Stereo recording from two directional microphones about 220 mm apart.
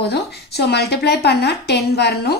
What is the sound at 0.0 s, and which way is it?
A woman's voice, 45° left (ahead or behind).